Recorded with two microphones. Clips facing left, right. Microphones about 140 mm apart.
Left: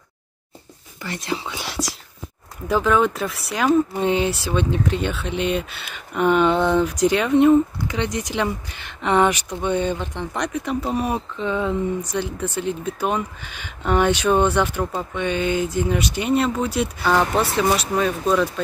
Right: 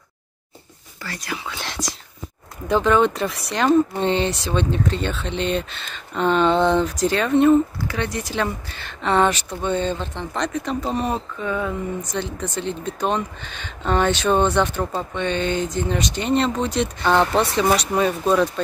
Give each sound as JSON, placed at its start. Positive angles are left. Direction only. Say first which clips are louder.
{"t": 1.0, "sound": "speech", "louder": "left 3 dB", "side_deg": 25}
{"t": 1.6, "sound": "speech", "louder": "left 2 dB", "side_deg": 5}
{"t": 11.3, "sound": "speech", "louder": "left 2 dB", "side_deg": 20}
{"t": 12.0, "sound": "speech", "louder": "left 2 dB", "side_deg": 10}